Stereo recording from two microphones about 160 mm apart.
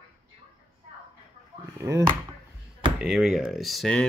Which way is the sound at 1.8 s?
20° right (ahead or behind).